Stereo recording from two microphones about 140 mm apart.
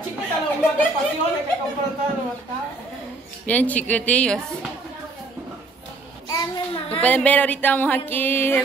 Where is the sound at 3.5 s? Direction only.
10° left (ahead or behind).